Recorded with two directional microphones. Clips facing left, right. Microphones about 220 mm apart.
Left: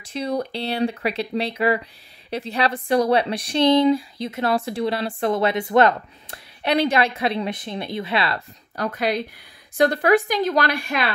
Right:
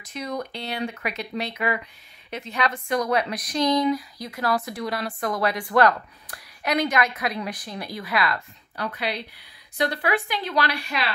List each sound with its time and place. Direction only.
0.0 s speech: 30° left (ahead or behind)
8.7 s a woman's voice: 45° left (ahead or behind)